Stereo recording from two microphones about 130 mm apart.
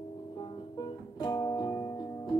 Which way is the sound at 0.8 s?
35° left (ahead or behind).